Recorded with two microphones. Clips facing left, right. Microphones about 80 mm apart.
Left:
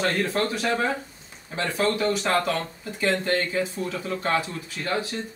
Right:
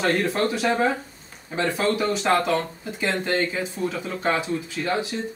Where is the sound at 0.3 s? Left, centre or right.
Right.